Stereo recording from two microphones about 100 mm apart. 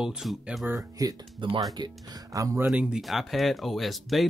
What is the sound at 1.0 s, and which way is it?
Speech, 40° right (ahead or behind).